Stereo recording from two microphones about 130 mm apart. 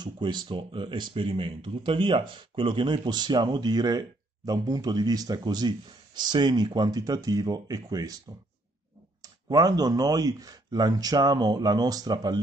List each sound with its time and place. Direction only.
0.0 s speech: 35° right (ahead or behind)
9.2 s speech: 30° right (ahead or behind)